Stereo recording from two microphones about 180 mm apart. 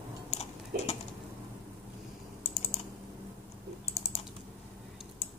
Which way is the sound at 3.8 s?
35° left (ahead or behind).